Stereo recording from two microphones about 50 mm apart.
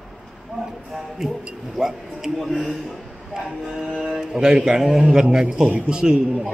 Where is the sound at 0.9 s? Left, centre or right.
Centre.